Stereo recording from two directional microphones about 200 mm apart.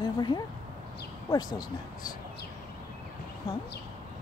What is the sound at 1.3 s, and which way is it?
Speech, 20° left (ahead or behind).